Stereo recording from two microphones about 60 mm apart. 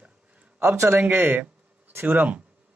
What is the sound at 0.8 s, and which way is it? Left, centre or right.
Speech, right.